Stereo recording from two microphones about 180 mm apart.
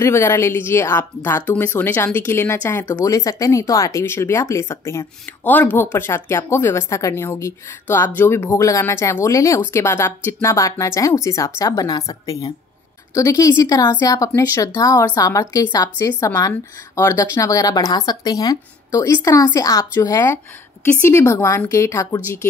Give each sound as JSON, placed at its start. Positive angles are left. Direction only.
{"t": 0.0, "sound": "speech", "side_deg": 15}